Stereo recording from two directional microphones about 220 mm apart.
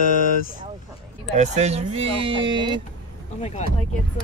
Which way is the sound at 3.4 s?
30° left (ahead or behind).